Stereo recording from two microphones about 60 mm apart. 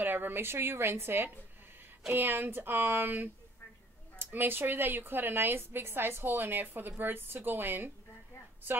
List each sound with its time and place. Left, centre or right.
0.0 s a woman's voice: right